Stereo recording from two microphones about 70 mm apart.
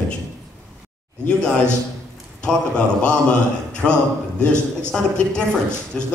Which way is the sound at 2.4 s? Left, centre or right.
Centre.